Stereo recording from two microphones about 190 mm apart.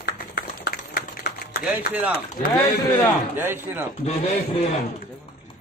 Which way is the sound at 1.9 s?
10° right (ahead or behind).